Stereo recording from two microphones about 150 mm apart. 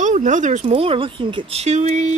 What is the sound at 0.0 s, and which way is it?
Speech, 55° right (ahead or behind).